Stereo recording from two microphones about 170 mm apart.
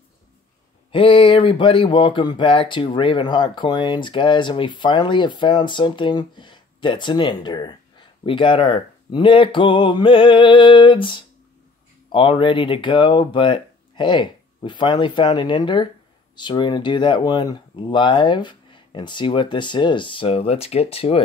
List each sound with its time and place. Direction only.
0.9 s speech: 30° left (ahead or behind)